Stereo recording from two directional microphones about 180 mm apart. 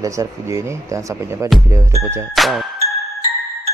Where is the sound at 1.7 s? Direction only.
15° right (ahead or behind).